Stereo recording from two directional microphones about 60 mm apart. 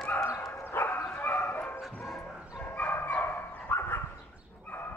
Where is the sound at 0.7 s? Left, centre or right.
Left.